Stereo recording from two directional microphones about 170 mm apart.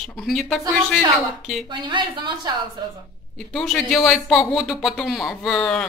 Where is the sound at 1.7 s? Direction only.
30° right (ahead or behind).